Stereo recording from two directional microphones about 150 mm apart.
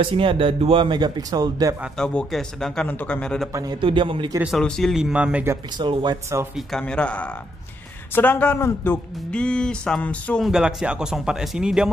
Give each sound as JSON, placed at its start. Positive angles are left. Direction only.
{"t": 0.0, "sound": "speech", "side_deg": -35}
{"t": 2.0, "sound": "speech", "side_deg": 5}
{"t": 3.8, "sound": "speech", "side_deg": -35}
{"t": 4.4, "sound": "speech", "side_deg": 0}
{"t": 5.8, "sound": "speech", "side_deg": -30}
{"t": 6.5, "sound": "speech", "side_deg": 5}
{"t": 10.4, "sound": "speech", "side_deg": -5}